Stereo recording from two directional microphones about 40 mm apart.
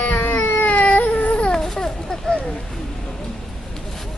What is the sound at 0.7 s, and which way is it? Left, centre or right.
Baby cry, left.